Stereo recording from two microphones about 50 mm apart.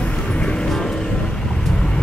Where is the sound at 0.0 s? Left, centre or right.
Left.